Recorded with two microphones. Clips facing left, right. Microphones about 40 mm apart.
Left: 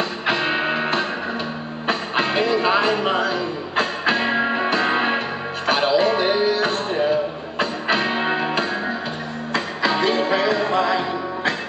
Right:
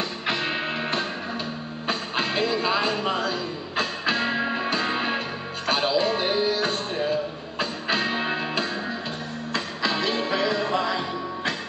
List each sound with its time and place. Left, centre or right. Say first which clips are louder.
0.3 s music: left 6 dB; centre
1.9 s music: left 5 dB; centre